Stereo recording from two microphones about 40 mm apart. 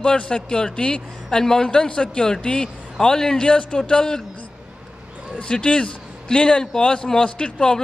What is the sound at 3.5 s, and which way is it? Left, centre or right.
Speech, left.